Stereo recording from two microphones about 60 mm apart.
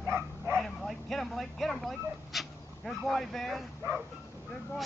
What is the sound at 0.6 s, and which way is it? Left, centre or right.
Vehicle, centre.